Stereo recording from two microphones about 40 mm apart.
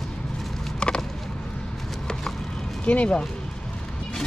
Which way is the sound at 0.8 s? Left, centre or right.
Left.